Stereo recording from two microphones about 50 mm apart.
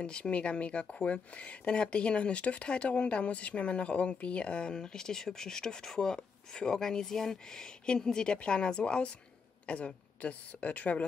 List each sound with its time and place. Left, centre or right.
0.0 s speech: left